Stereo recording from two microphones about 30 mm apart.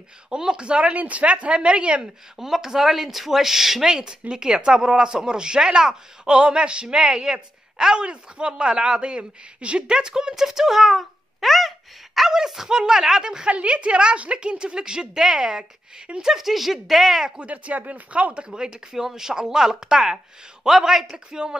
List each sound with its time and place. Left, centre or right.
0.3 s a woman's voice: right
0.9 s a woman's voice: right
2.3 s speech: centre
3.9 s speech: right; by 11.7 s centre
12.2 s speech: centre
13.5 s a woman's voice: right; by 17.3 s centre
17.4 s speech: right
18.5 s speech: right